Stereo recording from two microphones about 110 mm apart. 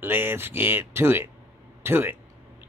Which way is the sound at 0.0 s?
20° right (ahead or behind).